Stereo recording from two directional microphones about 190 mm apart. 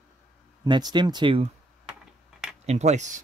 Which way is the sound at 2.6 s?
35° right (ahead or behind).